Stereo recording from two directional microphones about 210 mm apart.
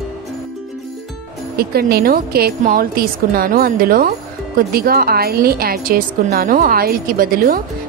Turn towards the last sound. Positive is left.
turn(degrees=-45)  # may be behind; listen again after turning